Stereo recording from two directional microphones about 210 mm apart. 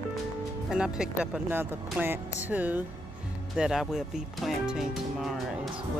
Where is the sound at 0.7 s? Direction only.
5° right (ahead or behind).